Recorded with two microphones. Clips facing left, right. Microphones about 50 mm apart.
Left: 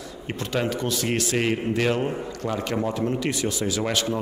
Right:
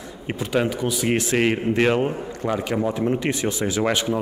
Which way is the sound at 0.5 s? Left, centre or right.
Centre.